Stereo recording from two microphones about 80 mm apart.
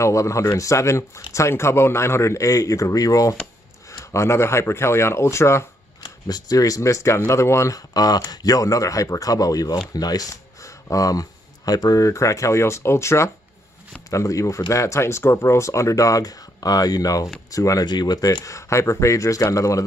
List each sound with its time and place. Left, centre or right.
0.0 s speech: left
4.1 s speech: left
6.0 s speech: left
17.8 s speech: left